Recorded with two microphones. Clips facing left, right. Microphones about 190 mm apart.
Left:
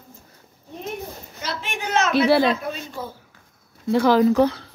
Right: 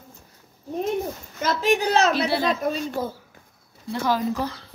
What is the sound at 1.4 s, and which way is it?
Speech, 35° right (ahead or behind).